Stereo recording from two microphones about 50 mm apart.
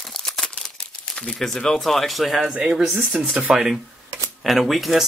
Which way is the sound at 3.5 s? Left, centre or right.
Centre.